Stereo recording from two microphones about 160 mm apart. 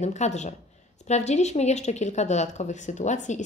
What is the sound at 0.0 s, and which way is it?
Speech, 45° left (ahead or behind).